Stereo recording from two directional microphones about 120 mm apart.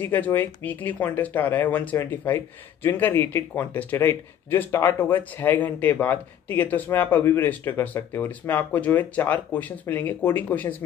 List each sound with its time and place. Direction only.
0.0 s speech: 15° left (ahead or behind)